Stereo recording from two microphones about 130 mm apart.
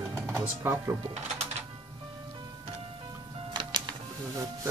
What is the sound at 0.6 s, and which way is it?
Speech, 20° right (ahead or behind).